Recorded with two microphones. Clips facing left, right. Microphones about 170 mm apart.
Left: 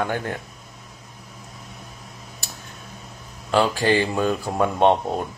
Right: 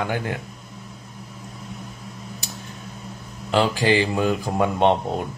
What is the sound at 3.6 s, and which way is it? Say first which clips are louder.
Speech: even; 20° right (ahead or behind).